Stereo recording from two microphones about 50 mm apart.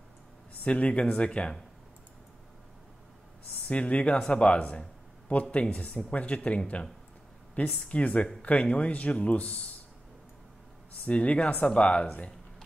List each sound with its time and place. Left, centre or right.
0.7 s speech: left
3.6 s speech: left
11.1 s speech: left